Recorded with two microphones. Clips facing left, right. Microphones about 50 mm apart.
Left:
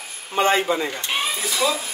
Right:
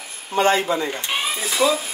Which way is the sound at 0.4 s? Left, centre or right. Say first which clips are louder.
Right 1 dB; left.